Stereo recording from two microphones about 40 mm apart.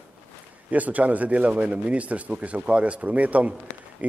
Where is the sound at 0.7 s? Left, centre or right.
Right.